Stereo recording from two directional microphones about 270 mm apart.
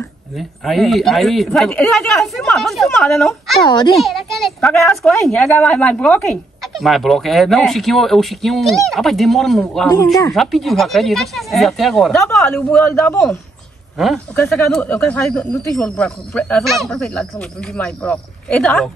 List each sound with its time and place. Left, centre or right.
0.4 s speech: centre
3.6 s a child's voice: centre
3.9 s speech: centre